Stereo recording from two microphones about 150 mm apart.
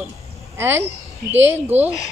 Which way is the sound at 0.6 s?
15° right (ahead or behind).